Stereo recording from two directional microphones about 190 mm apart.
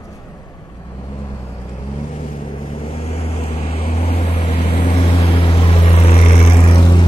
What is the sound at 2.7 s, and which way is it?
Vehicle, 30° left (ahead or behind).